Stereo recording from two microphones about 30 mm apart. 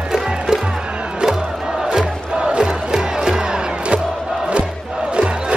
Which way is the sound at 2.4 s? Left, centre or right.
Right.